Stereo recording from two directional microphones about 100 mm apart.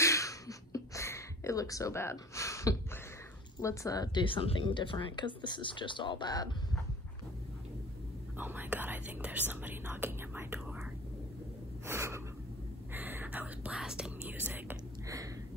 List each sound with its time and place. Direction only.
0.0 s a sound: 30° left (ahead or behind)
3.6 s speech: 35° left (ahead or behind)
8.4 s speech: 20° right (ahead or behind)
11.8 s gasp: 25° right (ahead or behind)
12.9 s speech: 20° right (ahead or behind)
14.3 s speech: 20° right (ahead or behind)